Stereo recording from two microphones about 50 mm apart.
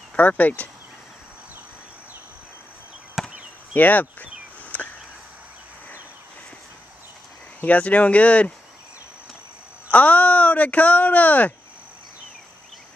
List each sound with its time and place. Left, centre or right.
0.1 s speech: left
3.2 s chop: centre
3.7 s speech: left
4.7 s a sound: left
7.6 s speech: left
9.8 s speech: left